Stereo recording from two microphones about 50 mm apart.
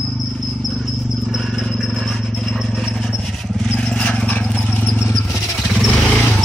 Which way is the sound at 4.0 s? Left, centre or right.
Left.